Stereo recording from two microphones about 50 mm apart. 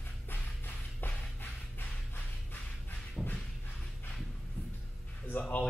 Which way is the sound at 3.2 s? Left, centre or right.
Centre.